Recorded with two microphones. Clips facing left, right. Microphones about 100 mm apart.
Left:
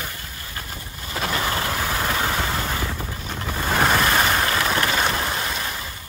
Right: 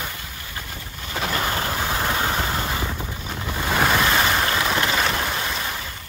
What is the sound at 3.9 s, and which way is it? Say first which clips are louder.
Boat: even; 5° left (ahead or behind).